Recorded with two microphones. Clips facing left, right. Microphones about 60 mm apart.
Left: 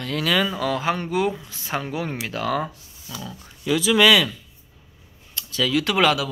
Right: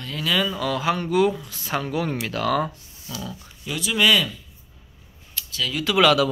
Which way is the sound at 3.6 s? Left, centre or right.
Left.